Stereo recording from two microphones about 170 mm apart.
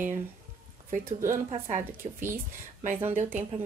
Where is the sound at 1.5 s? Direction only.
45° right (ahead or behind).